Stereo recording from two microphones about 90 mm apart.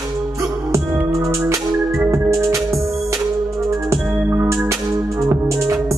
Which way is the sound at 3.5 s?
35° right (ahead or behind).